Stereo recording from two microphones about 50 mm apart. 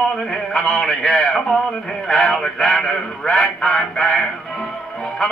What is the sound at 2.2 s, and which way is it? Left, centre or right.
Music, centre.